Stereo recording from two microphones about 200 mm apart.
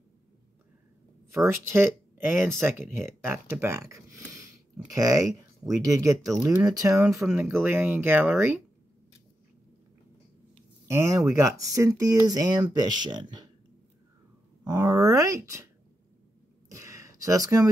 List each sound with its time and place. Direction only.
1.3 s speech: 10° right (ahead or behind)
6.2 s speech: centre (ahead or behind)
6.6 s speech: 20° right (ahead or behind)
10.9 s speech: 15° right (ahead or behind)
14.6 s speech: 15° right (ahead or behind)
16.7 s a sound: 15° right (ahead or behind)